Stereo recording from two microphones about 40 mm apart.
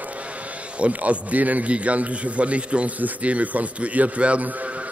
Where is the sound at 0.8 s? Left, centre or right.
Right.